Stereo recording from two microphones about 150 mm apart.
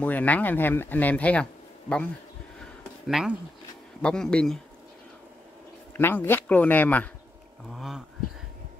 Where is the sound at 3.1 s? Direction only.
Centre (ahead or behind).